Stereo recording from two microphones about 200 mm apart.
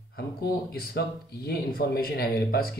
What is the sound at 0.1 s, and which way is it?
Speech, 50° left (ahead or behind).